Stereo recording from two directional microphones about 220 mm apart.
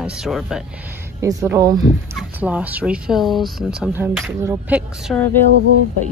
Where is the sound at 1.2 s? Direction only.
15° right (ahead or behind).